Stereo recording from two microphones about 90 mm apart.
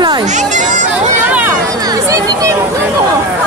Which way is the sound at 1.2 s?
20° right (ahead or behind).